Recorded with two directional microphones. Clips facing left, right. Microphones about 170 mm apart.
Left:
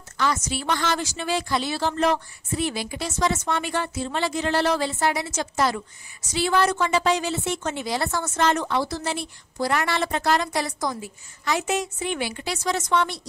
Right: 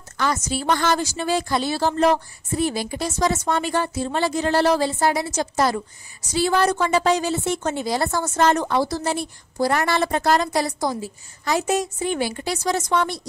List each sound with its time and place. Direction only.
0.2 s a woman's voice: 40° right (ahead or behind)